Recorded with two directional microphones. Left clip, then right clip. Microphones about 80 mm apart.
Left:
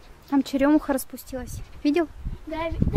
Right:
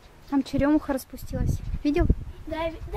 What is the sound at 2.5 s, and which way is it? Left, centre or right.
Speech, centre.